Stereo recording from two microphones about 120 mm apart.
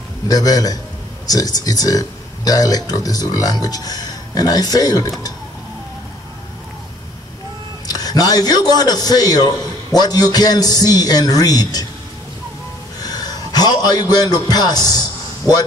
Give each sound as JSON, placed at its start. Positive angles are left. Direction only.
{"t": 0.3, "sound": "speech", "side_deg": 30}
{"t": 7.9, "sound": "speech", "side_deg": 35}
{"t": 13.0, "sound": "a sound", "side_deg": 35}